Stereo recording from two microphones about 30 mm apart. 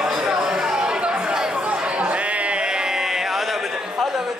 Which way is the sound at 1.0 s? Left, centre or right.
Right.